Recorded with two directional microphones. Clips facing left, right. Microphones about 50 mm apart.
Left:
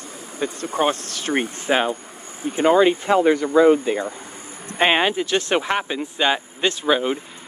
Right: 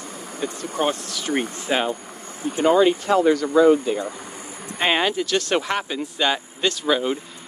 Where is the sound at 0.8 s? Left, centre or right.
Left.